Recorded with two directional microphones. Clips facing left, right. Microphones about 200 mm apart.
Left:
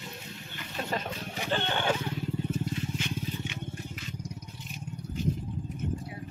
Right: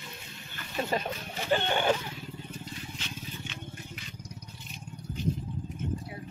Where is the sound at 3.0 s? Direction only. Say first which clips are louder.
Left 7 dB; 10° left (ahead or behind).